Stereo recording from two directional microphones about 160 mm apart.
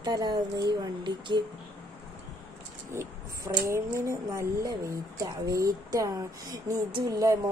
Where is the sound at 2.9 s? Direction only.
15° right (ahead or behind).